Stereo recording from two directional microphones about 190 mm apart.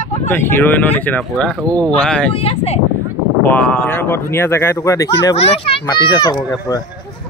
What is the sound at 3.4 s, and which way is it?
A child's voice, 10° left (ahead or behind).